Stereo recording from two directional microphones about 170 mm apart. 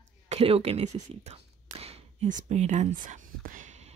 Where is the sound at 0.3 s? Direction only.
35° right (ahead or behind).